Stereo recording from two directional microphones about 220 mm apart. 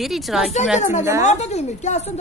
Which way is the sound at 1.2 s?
30° left (ahead or behind).